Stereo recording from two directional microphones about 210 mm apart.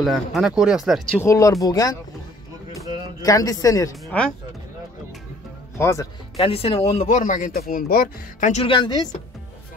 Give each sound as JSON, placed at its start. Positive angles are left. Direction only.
{"t": 0.0, "sound": "speech", "side_deg": 0}
{"t": 1.2, "sound": "speech", "side_deg": 15}
{"t": 2.7, "sound": "a sound", "side_deg": -15}
{"t": 3.2, "sound": "speech", "side_deg": 15}
{"t": 5.8, "sound": "speech", "side_deg": 15}
{"t": 6.3, "sound": "speech", "side_deg": 25}